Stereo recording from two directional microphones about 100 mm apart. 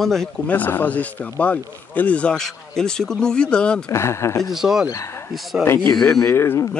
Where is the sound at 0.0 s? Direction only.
Centre (ahead or behind).